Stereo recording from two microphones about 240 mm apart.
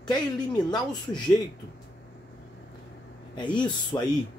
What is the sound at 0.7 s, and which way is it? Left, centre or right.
Speech, centre.